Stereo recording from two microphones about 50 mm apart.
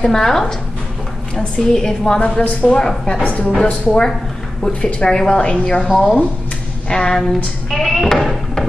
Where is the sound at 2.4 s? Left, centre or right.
Left.